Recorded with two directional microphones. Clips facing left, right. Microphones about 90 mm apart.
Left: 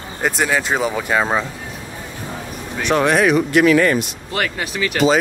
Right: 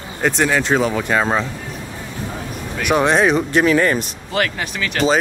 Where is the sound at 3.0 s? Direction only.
25° right (ahead or behind).